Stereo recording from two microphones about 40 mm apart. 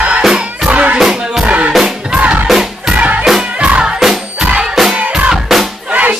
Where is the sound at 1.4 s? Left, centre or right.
Right.